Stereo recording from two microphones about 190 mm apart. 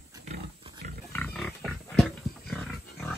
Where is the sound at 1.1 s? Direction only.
5° left (ahead or behind).